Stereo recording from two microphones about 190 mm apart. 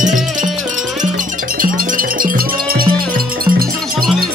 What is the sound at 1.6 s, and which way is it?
Music, 45° right (ahead or behind).